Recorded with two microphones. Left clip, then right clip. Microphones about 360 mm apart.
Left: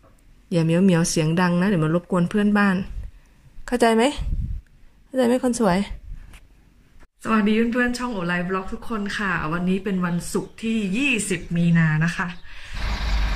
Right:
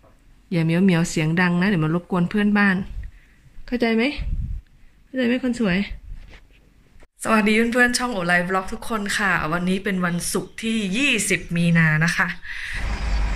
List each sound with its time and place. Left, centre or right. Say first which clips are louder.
0.5 s speech: left 1 dB; centre
3.6 s a woman's voice: left 3 dB; left
7.2 s speech: right 3 dB; centre